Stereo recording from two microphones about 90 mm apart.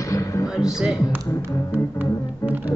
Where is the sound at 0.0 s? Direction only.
35° left (ahead or behind).